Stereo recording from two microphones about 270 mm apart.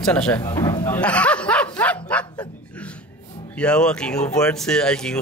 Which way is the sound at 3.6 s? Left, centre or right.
Centre.